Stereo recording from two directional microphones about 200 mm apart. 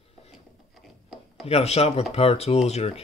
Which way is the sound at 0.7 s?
Centre (ahead or behind).